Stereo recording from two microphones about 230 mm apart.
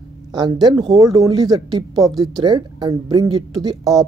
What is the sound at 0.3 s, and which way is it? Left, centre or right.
Speech, centre.